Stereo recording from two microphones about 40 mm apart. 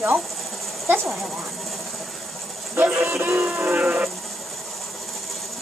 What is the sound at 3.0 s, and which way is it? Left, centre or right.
Music, right.